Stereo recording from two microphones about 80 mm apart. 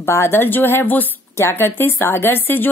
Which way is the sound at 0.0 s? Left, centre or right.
Left.